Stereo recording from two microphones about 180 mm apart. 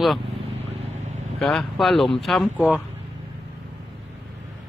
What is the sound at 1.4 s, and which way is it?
Speech, centre (ahead or behind).